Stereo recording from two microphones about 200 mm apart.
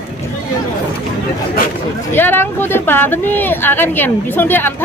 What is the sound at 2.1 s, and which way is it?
Speech, 10° left (ahead or behind).